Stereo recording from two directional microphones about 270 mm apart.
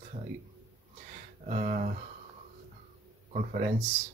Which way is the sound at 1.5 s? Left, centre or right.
Right.